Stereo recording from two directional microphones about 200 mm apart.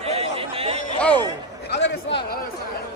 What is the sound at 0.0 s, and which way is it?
Chatter, 30° right (ahead or behind).